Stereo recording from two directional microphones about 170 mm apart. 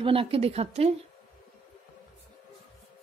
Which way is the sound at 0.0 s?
30° right (ahead or behind).